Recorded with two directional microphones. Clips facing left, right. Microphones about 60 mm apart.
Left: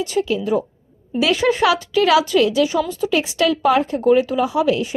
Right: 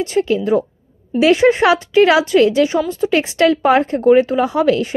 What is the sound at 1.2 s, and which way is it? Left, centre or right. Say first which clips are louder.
Speech: right 5 dB; right.